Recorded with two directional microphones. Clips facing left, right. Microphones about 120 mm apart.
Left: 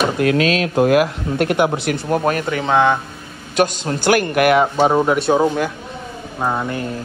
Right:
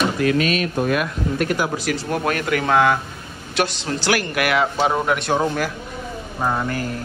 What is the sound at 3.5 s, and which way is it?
Speech, 45° left (ahead or behind).